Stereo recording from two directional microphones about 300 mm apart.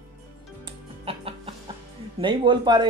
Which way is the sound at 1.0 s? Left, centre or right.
Centre.